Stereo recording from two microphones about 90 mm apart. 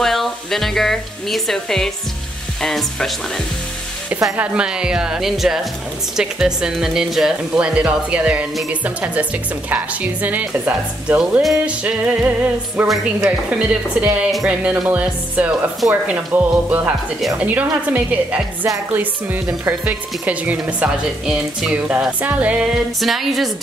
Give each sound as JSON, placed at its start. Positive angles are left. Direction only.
{"t": 0.0, "sound": "a woman's voice", "side_deg": 0}
{"t": 4.4, "sound": "a woman's voice", "side_deg": -10}
{"t": 12.8, "sound": "a woman's voice", "side_deg": 0}
{"t": 13.5, "sound": "speech", "side_deg": -10}
{"t": 22.9, "sound": "a woman's voice", "side_deg": 0}